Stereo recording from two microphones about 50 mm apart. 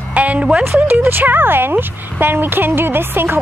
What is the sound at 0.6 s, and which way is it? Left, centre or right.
Speech, right.